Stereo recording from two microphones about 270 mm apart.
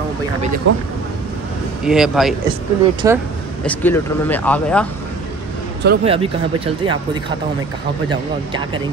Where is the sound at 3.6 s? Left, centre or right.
Centre.